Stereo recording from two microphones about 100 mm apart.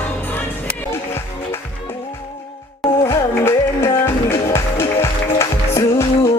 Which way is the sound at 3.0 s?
25° left (ahead or behind).